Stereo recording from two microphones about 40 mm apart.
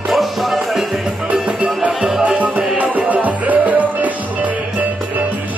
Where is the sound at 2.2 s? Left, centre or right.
Right.